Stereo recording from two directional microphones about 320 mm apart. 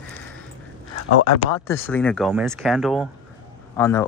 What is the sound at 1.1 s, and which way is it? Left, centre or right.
Speech, left.